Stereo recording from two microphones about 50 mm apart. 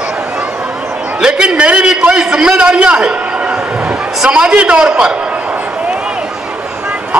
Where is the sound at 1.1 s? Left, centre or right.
Centre.